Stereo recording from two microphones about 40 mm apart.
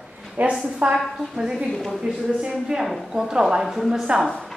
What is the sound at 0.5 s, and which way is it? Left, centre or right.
Speech, right.